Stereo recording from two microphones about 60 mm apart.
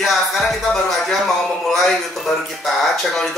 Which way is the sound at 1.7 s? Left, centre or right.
Centre.